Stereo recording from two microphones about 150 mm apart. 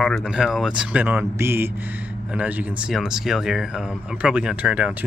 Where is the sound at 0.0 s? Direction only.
5° left (ahead or behind).